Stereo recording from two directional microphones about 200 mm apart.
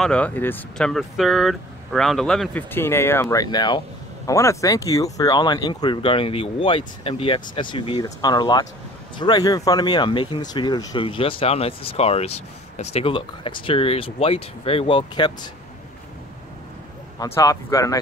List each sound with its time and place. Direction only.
0.0 s speech: 5° left (ahead or behind); by 15.5 s 20° left (ahead or behind)
17.2 s speech: 15° left (ahead or behind)